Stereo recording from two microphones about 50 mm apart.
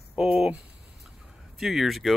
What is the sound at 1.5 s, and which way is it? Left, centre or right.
Speech, centre.